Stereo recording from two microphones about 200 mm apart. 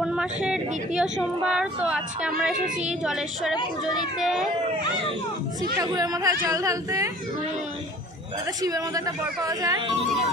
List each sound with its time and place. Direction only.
0.0 s speech: 5° right (ahead or behind)
2.5 s a woman's voice: 40° right (ahead or behind)
3.0 s speech: centre (ahead or behind)
5.8 s speech: 20° right (ahead or behind)
8.6 s speech: 15° right (ahead or behind)